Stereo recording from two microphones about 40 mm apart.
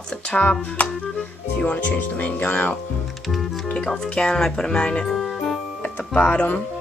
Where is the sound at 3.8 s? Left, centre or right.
Centre.